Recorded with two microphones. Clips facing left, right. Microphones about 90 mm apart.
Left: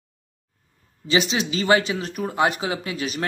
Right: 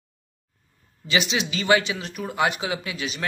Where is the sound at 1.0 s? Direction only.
35° left (ahead or behind).